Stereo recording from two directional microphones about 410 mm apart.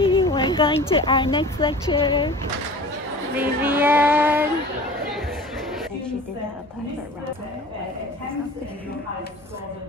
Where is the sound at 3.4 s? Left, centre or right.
Centre.